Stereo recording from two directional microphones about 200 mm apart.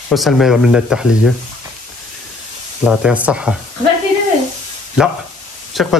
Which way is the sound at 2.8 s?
5° right (ahead or behind).